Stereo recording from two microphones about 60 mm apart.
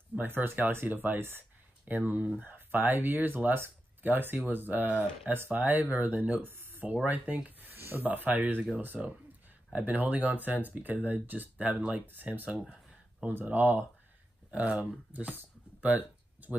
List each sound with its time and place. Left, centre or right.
0.1 s speech: right
7.7 s speech: right